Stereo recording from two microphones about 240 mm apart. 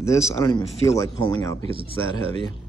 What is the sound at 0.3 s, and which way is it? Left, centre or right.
Speech, centre.